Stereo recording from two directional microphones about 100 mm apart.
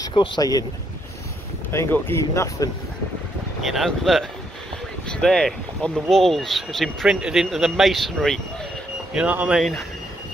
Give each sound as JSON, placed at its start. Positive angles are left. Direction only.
{"t": 0.4, "sound": "speech", "side_deg": 40}
{"t": 1.7, "sound": "speech", "side_deg": 25}
{"t": 3.6, "sound": "speech", "side_deg": 0}
{"t": 9.1, "sound": "speech", "side_deg": -15}
{"t": 9.6, "sound": "speech", "side_deg": 0}